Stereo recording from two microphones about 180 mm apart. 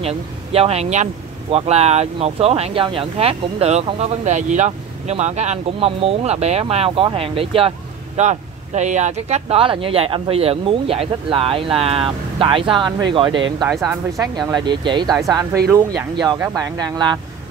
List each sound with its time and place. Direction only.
0.0 s speech: 35° right (ahead or behind)
15.7 s speech: 15° right (ahead or behind)